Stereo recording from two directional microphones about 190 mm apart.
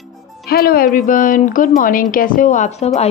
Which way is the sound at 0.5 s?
55° left (ahead or behind).